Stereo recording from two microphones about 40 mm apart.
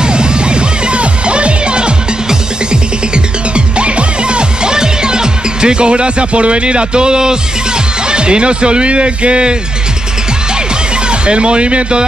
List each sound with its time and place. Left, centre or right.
0.0 s music: right
11.1 s speech: right